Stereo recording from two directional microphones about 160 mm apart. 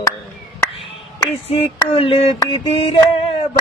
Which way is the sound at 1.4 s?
40° left (ahead or behind).